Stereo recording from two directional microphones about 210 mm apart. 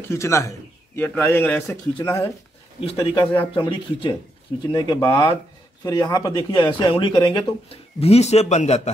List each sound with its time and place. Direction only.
0.1 s a man's voice: 15° left (ahead or behind)
2.0 s speech: 25° left (ahead or behind)